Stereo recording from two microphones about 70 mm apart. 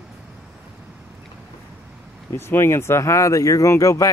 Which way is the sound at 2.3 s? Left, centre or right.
Left.